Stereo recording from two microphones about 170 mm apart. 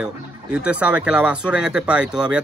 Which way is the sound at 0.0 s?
5° right (ahead or behind).